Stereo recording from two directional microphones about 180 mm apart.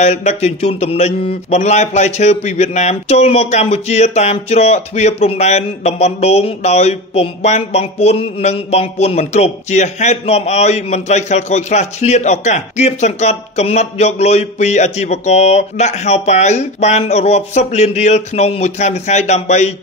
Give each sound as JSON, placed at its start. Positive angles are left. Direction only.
{"t": 0.0, "sound": "speech", "side_deg": 40}